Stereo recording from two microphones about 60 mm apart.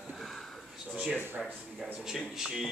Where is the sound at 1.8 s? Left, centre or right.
Centre.